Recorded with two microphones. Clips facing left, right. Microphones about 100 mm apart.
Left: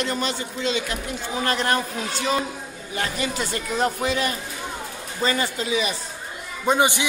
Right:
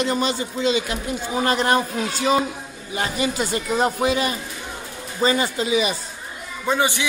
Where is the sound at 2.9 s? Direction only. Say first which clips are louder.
Right 3 dB; 15° right (ahead or behind).